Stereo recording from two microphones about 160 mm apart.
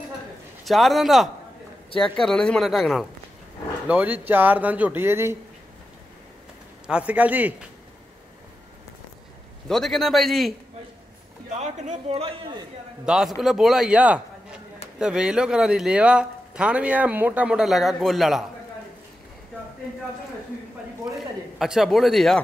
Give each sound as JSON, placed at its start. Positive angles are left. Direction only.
{"t": 0.7, "sound": "a man's voice", "side_deg": 0}
{"t": 6.9, "sound": "speech", "side_deg": -10}
{"t": 9.7, "sound": "a man's voice", "side_deg": 0}
{"t": 11.5, "sound": "a man's voice", "side_deg": -45}
{"t": 13.0, "sound": "a man's voice", "side_deg": 0}
{"t": 21.5, "sound": "a man's voice", "side_deg": 0}